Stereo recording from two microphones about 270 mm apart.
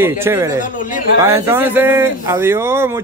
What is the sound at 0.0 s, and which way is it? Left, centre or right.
Speech, centre.